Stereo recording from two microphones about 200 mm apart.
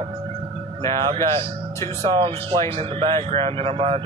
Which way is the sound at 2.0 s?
30° right (ahead or behind).